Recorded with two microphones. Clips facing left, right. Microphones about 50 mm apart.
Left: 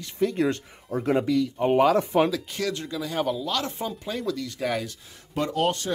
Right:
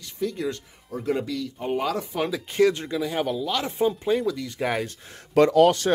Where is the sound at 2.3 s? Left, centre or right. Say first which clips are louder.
Right 8 dB; right.